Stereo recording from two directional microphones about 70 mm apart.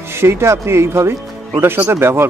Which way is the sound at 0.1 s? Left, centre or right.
Right.